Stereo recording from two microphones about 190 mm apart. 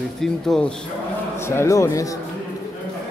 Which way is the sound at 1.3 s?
15° left (ahead or behind).